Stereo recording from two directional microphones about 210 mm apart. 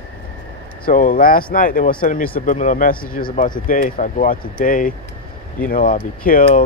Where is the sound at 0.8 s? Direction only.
40° left (ahead or behind).